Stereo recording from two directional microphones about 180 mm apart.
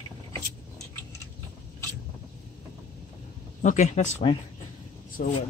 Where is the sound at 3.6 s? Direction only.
40° left (ahead or behind).